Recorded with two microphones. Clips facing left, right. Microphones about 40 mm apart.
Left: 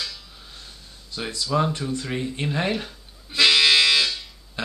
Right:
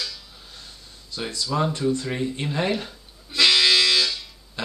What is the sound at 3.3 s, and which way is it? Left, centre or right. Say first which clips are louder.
Music: left 1 dB; left.